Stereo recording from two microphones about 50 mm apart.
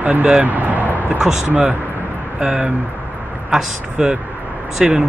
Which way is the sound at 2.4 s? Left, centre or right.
Centre.